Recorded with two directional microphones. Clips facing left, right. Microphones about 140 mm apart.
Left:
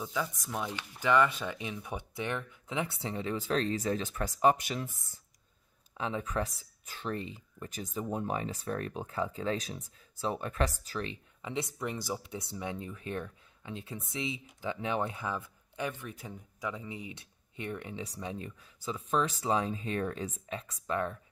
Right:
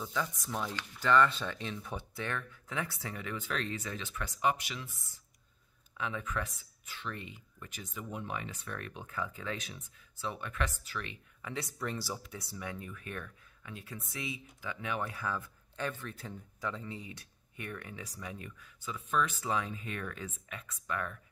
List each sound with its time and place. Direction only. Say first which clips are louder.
0.0 s speech: left 1 dB; 10° left (ahead or behind); by 5.2 s 45° left (ahead or behind)
5.9 s speech: left 4 dB; 30° left (ahead or behind)